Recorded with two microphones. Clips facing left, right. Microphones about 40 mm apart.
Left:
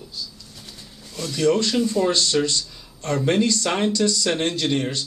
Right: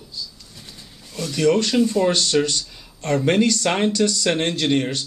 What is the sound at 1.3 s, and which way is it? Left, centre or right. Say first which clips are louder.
Speech: right 1 dB; right.